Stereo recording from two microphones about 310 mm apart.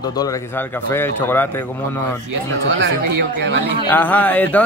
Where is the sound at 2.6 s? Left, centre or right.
Right.